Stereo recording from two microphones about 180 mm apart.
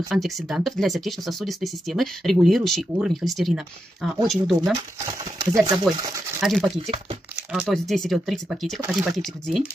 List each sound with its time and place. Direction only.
0.1 s speech: centre (ahead or behind)
5.0 s speech: 20° right (ahead or behind)
6.4 s speech: centre (ahead or behind)